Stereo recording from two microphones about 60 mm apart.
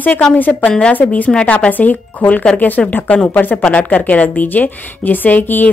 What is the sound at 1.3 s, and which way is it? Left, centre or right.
Speech, centre.